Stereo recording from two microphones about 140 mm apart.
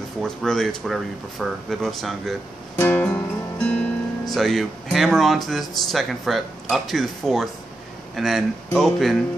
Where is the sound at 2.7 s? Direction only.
15° left (ahead or behind).